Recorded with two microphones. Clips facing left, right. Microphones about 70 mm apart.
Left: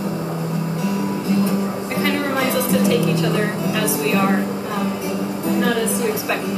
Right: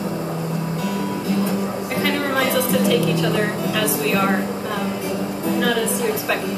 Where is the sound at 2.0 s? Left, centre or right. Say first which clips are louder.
Even; left.